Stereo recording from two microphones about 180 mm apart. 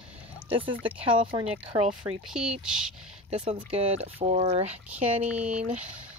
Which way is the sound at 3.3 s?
35° right (ahead or behind).